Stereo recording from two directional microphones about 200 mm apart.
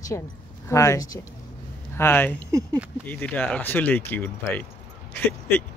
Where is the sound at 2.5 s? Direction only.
15° right (ahead or behind).